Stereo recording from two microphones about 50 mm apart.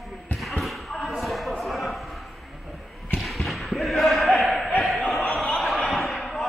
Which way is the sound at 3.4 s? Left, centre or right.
Centre.